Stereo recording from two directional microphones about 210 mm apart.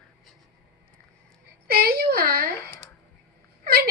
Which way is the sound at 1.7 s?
45° right (ahead or behind).